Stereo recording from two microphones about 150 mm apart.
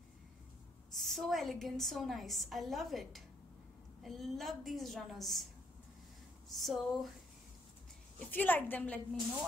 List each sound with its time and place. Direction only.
0.9 s a woman's voice: centre (ahead or behind)
6.5 s a woman's voice: centre (ahead or behind)
8.2 s a woman's voice: 10° left (ahead or behind)